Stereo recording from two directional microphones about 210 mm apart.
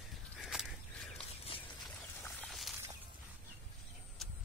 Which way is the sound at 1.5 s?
25° left (ahead or behind).